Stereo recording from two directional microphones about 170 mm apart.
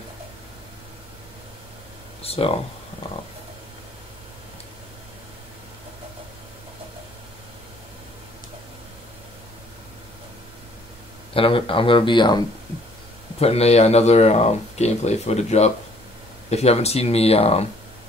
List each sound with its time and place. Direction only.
2.2 s speech: 35° left (ahead or behind)
11.3 s speech: 30° left (ahead or behind)
13.4 s speech: 35° left (ahead or behind)